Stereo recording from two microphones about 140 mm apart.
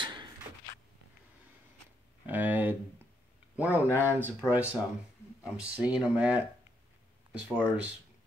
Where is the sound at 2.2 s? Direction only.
10° right (ahead or behind).